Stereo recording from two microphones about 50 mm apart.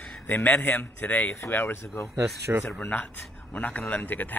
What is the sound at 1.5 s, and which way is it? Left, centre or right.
Speech, left.